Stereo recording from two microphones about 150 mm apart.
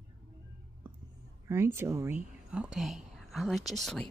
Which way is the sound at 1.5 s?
15° right (ahead or behind).